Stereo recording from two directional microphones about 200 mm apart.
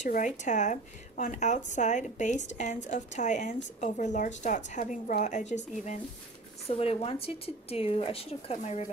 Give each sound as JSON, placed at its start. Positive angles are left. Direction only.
{"t": 0.0, "sound": "a woman's voice", "side_deg": 40}